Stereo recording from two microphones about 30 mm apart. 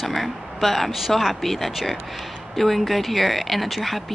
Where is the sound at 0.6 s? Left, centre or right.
Centre.